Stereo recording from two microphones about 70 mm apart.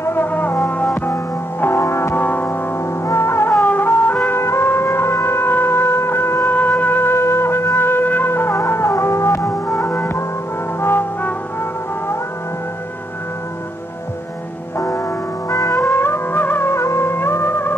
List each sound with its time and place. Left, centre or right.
0.0 s music: left
2.2 s music: left
3.1 s music: left
10.8 s brass instrument: left
15.5 s music: left
15.9 s music: left